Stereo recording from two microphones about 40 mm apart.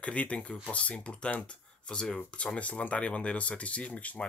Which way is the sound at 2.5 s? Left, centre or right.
Left.